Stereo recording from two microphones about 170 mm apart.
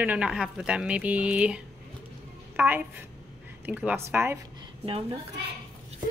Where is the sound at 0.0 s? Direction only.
5° right (ahead or behind).